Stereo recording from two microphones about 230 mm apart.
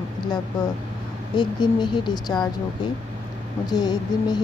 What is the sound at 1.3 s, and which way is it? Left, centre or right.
Speech, centre.